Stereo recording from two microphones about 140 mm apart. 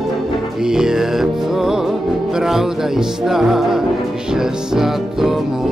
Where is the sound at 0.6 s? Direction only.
5° right (ahead or behind).